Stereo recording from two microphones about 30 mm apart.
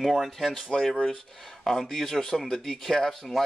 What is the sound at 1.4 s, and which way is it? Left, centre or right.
Speech, centre.